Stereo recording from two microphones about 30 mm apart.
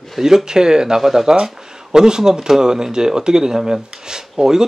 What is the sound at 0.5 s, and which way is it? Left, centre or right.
Speech, right.